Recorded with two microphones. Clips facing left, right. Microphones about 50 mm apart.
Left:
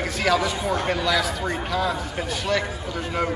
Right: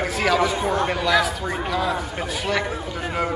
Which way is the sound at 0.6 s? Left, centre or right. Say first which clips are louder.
Right 3 dB; right.